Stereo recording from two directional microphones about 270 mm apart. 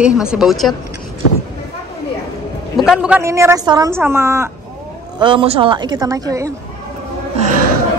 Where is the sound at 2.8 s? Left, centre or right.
Centre.